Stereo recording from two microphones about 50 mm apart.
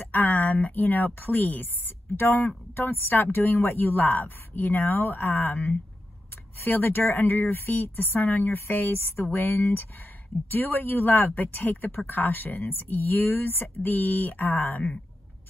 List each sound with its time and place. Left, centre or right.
0.1 s speech: left